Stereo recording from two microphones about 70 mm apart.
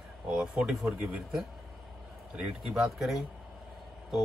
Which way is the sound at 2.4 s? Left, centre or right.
Centre.